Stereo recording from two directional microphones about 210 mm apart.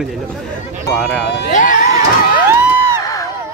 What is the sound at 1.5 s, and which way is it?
Crowd, 40° left (ahead or behind).